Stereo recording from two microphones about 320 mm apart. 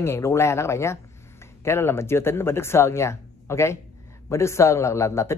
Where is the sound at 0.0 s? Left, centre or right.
Centre.